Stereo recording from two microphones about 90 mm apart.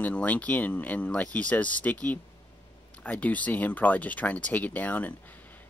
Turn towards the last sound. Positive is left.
turn(degrees=15)  # may be behind; listen again after turning